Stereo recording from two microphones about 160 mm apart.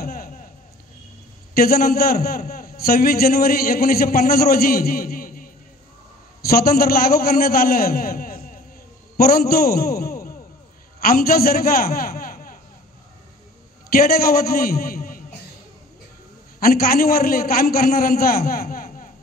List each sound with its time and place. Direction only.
0.0 s a sound: 65° left (ahead or behind)
1.5 s a man's voice: 70° left (ahead or behind)
13.8 s a man's voice: 70° left (ahead or behind)
16.5 s a man's voice: 70° left (ahead or behind)